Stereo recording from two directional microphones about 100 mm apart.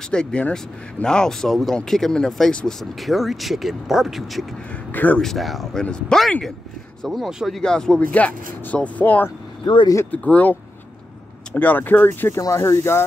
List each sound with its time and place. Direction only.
0.1 s speech: 10° left (ahead or behind)
4.9 s speech: 15° left (ahead or behind)
5.2 s speech: centre (ahead or behind); by 12.4 s 20° left (ahead or behind)
12.4 s speech: 30° left (ahead or behind)